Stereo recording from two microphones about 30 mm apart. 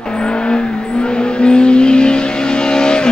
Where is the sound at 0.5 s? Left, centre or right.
Left.